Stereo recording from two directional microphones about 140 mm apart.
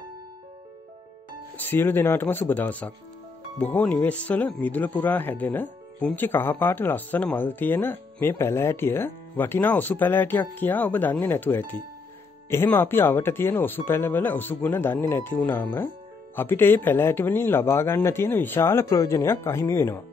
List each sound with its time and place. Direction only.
1.6 s speech: 15° left (ahead or behind)